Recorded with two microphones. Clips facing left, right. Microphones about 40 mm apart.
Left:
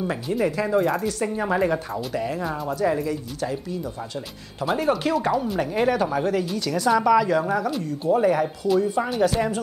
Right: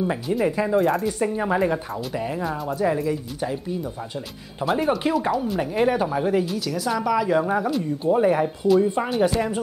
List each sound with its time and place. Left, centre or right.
0.0 s a woman's voice: centre
3.3 s speech: right
4.6 s speech: centre
5.3 s a woman's voice: centre
7.2 s speech: centre
9.4 s a woman's voice: centre